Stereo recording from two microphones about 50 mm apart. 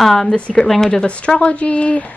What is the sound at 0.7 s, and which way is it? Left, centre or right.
Speech, centre.